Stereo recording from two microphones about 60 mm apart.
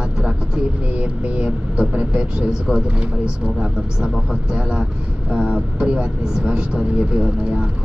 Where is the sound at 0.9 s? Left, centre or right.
Right.